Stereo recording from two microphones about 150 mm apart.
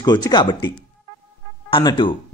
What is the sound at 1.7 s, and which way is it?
Speech, 30° left (ahead or behind).